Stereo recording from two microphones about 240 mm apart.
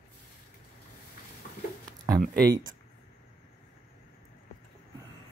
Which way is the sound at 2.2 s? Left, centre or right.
Right.